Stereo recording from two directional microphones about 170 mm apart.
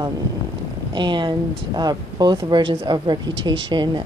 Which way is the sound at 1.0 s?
30° right (ahead or behind).